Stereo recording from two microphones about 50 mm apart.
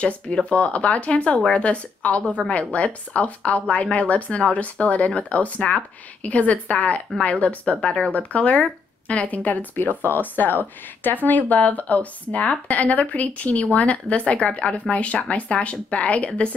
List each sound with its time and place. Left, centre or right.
0.0 s speech: left